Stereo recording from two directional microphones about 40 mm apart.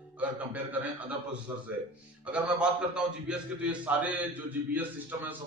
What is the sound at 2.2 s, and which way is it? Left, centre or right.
A man's voice, right.